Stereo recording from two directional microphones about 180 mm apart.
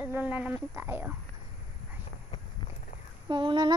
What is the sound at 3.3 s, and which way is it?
Speech, 25° right (ahead or behind).